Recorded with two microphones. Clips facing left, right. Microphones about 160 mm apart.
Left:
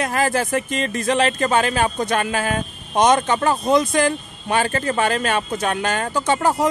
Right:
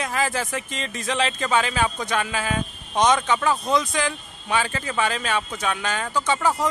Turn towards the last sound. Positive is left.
turn(degrees=50)  # may be behind; listen again after turning